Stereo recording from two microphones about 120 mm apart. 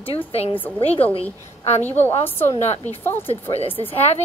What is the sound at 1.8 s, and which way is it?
Speech, 15° left (ahead or behind).